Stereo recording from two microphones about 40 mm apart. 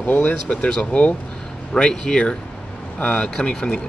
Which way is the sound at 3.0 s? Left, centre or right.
Left.